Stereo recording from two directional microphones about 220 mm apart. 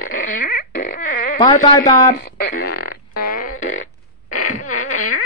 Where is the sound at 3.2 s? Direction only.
40° left (ahead or behind).